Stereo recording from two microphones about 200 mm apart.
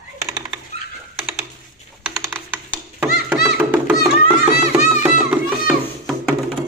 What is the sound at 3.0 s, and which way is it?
Music, 5° right (ahead or behind).